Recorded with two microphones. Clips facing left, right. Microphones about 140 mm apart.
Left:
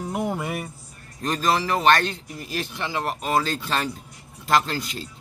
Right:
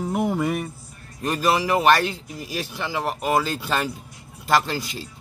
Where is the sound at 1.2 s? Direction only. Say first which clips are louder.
Right 2 dB; 10° right (ahead or behind).